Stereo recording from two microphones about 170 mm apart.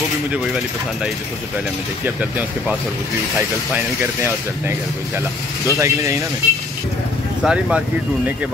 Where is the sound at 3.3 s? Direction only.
15° right (ahead or behind).